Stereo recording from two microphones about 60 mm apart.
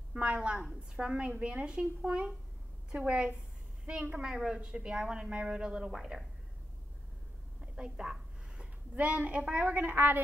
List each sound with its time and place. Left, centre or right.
0.1 s a woman's voice: centre
7.7 s a sound: centre
8.9 s a woman's voice: centre